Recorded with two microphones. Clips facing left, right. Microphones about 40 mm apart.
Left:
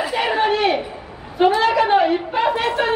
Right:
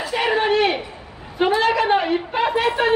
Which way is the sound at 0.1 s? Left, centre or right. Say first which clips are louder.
Right 2 dB; centre.